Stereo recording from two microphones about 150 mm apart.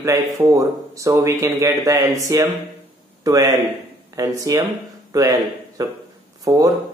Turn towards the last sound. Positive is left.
turn(degrees=-25)  # may be behind; listen again after turning